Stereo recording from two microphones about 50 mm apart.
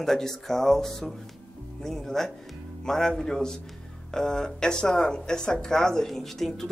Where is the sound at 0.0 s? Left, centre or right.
Centre.